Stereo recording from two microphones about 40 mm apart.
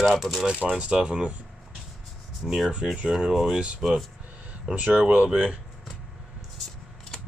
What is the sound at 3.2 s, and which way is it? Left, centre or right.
Speech, centre.